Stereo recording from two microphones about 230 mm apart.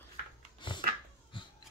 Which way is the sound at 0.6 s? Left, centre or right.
Left.